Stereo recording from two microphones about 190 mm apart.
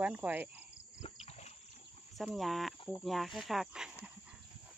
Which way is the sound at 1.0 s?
35° left (ahead or behind).